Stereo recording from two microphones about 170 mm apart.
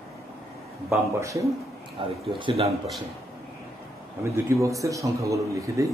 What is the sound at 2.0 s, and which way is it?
Speech, 30° right (ahead or behind).